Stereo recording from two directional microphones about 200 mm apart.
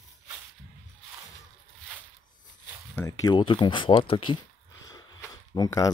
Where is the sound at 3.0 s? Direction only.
20° left (ahead or behind).